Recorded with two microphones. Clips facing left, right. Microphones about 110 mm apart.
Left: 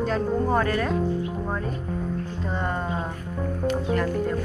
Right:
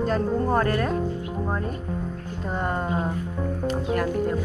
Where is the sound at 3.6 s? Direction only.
5° right (ahead or behind).